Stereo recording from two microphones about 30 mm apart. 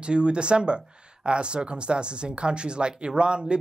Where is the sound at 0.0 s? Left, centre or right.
Right.